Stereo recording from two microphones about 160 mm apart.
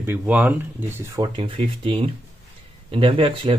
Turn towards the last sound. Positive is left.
turn(degrees=-35)  # may be behind; listen again after turning